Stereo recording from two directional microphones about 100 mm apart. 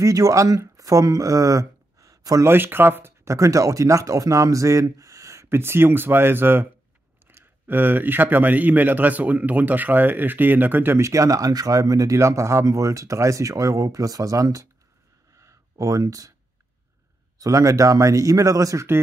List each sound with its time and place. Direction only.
0.0 s speech: 35° right (ahead or behind)
2.5 s speech: 20° right (ahead or behind)
15.3 s a sound: 30° right (ahead or behind)
17.4 s speech: 35° right (ahead or behind)